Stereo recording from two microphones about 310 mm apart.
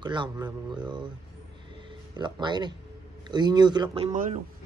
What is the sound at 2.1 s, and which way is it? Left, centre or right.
Speech, centre.